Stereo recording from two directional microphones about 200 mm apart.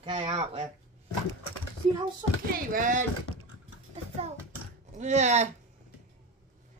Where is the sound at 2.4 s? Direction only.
40° right (ahead or behind).